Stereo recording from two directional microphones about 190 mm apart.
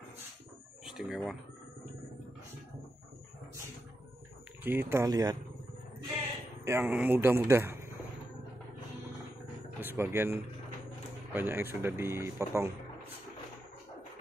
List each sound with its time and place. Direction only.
0.8 s speech: centre (ahead or behind)
4.6 s speech: 15° right (ahead or behind)
6.6 s speech: 10° right (ahead or behind)
9.8 s speech: 10° right (ahead or behind)